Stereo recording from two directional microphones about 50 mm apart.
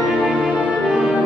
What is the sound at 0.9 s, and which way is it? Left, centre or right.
Music, centre.